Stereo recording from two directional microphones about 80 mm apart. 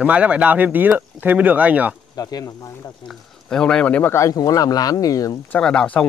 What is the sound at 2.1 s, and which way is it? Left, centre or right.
Speech, left.